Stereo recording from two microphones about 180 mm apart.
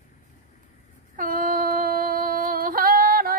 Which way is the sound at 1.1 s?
50° right (ahead or behind).